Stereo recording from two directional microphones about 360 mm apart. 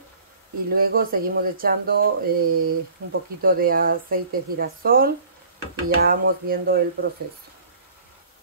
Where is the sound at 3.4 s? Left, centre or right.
Right.